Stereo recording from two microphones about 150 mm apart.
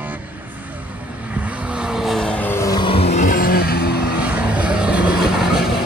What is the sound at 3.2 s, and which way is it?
Vehicle, 75° left (ahead or behind).